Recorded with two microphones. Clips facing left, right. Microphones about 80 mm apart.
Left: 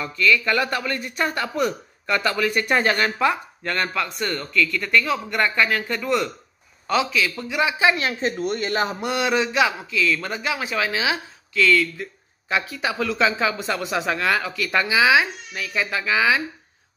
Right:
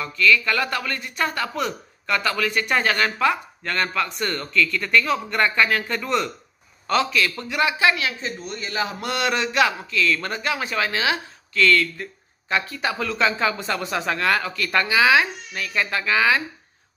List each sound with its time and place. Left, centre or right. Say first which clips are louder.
0.0 s a man's voice: right 1 dB; left; by 7.4 s centre
7.4 s a man's voice: left 1 dB; centre
7.9 s a woman's voice: left 3 dB; left
9.0 s a man's voice: even; centre